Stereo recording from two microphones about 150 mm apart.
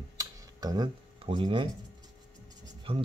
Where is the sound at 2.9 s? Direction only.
40° right (ahead or behind).